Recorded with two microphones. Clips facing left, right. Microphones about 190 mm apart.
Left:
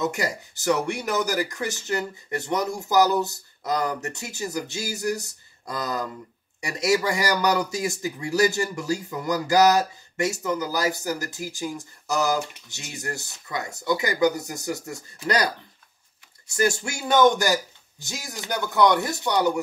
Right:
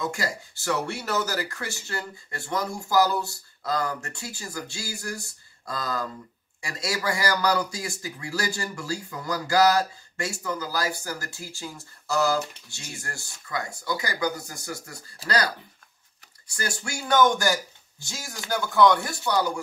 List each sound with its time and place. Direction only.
0.0 s speech: 20° left (ahead or behind)